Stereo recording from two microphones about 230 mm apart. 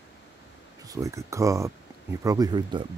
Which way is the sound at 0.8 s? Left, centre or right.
Centre.